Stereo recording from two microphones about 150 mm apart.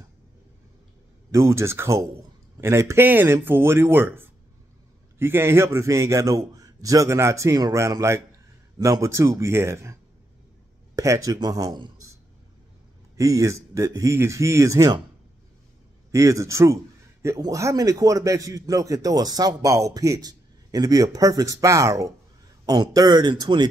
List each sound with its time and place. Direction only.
1.3 s a man's voice: 20° right (ahead or behind)
11.0 s a man's voice: 20° right (ahead or behind)
13.1 s a man's voice: 20° right (ahead or behind)
16.1 s a man's voice: 20° right (ahead or behind)